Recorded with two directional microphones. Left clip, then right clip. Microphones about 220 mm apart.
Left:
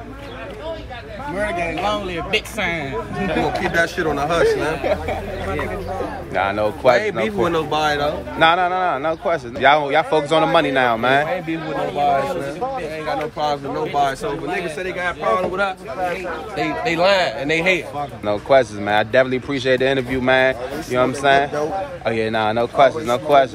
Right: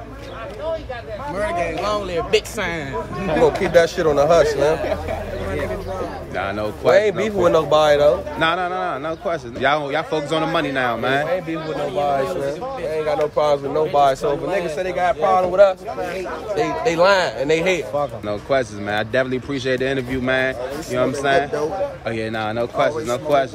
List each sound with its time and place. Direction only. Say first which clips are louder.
1.3 s speech: even; 5° left (ahead or behind)
3.4 s a man's voice: right 7 dB; 30° right (ahead or behind)
6.3 s speech: left 6 dB; 10° right (ahead or behind)
7.0 s a man's voice: right 3 dB; 40° right (ahead or behind)
8.4 s speech: left 4 dB; 10° right (ahead or behind)
12.9 s a man's voice: right 4 dB; 25° right (ahead or behind); by 15.7 s 45° right (ahead or behind)
16.5 s speech: right 2 dB; 15° right (ahead or behind)